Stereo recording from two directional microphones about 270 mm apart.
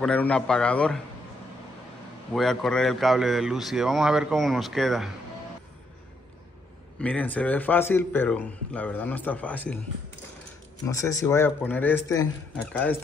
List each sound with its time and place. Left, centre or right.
0.0 s speech: centre
2.3 s speech: centre
7.0 s speech: centre
10.9 s speech: centre